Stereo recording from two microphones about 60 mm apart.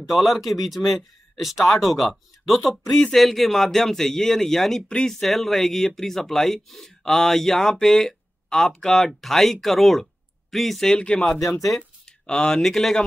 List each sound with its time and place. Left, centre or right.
0.1 s speech: centre
4.8 s speech: centre
5.2 s speech: centre